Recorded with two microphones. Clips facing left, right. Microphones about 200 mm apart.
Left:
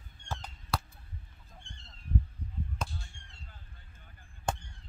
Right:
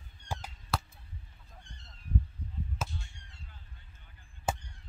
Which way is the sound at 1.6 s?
25° left (ahead or behind).